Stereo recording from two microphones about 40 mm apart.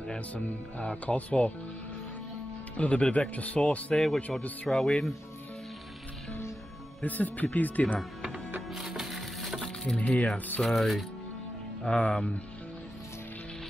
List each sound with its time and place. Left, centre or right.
0.3 s speech: left
2.8 s speech: left
3.9 s speech: centre
7.0 s speech: left
8.6 s music: centre
9.9 s speech: left
10.6 s speech: centre
11.9 s speech: left